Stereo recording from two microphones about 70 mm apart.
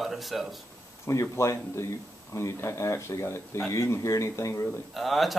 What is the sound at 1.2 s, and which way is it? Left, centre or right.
Speech, left.